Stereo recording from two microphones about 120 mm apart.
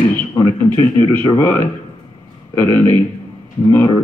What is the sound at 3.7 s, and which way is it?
Speech, 30° left (ahead or behind).